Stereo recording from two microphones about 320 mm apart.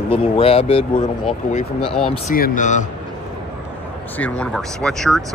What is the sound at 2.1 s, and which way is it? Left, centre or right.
Speech, left.